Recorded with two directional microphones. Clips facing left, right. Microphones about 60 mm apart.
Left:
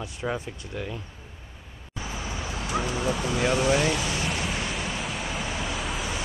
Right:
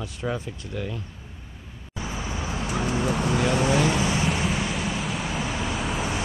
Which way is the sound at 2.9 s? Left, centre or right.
Right.